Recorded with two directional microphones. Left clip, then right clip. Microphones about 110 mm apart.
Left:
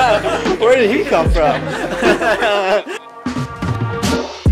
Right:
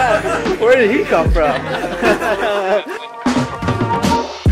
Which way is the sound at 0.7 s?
35° left (ahead or behind).